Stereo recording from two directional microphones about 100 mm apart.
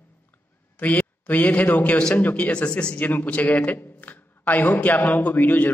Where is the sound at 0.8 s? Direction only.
15° left (ahead or behind).